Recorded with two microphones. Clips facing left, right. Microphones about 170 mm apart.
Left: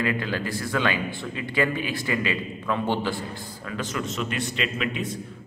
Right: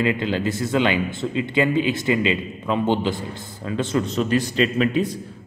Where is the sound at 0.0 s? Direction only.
20° right (ahead or behind).